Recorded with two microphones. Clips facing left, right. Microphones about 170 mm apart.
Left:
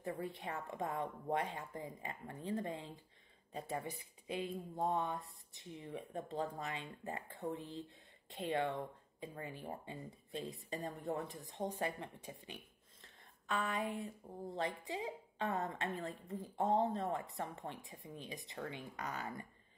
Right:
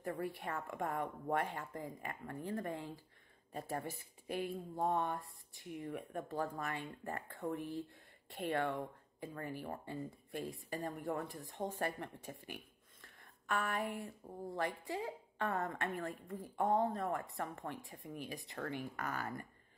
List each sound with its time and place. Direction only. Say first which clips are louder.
0.0 s a woman's voice: right 2 dB; 20° left (ahead or behind)